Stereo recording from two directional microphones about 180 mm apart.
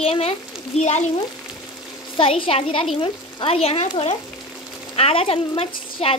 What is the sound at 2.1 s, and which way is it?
Speech, 30° left (ahead or behind).